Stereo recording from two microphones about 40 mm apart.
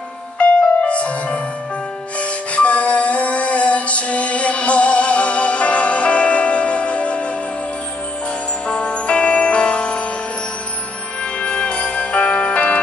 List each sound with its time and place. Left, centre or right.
0.4 s music: left
8.6 s music: left
11.3 s music: left